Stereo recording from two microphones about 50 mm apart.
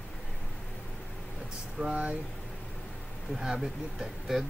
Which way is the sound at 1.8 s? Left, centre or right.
Right.